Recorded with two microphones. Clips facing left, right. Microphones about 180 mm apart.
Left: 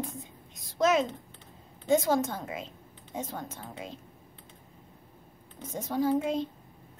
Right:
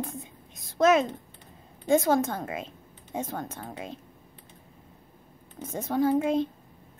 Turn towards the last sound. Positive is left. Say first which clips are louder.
# right 3 dB
turn(degrees=-55)  # may be behind; listen again after turning